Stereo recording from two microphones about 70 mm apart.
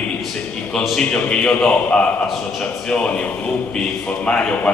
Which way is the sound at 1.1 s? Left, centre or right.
Centre.